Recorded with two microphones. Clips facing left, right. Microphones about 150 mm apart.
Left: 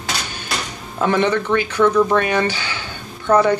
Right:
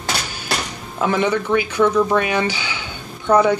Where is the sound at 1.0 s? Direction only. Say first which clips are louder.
Left 1 dB; 10° right (ahead or behind).